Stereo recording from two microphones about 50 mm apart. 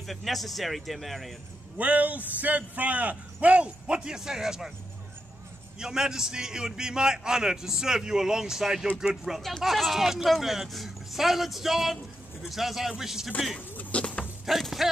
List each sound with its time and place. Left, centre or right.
0.0 s speech: centre
1.8 s a man's voice: right; by 4.7 s centre
5.8 s a man's voice: centre
13.9 s dog: left
14.6 s speech: centre